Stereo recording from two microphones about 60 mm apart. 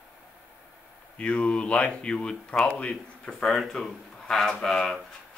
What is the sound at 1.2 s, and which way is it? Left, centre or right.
Speech, centre.